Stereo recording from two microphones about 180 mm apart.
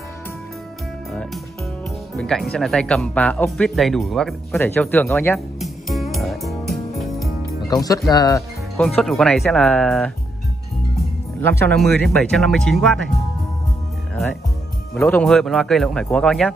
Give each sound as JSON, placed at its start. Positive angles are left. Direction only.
{"t": 2.1, "sound": "speech", "side_deg": 5}
{"t": 4.6, "sound": "speech", "side_deg": 10}
{"t": 5.6, "sound": "music", "side_deg": 0}
{"t": 7.6, "sound": "speech", "side_deg": 20}
{"t": 8.8, "sound": "speech", "side_deg": 0}
{"t": 11.4, "sound": "speech", "side_deg": 10}
{"t": 15.0, "sound": "speech", "side_deg": 5}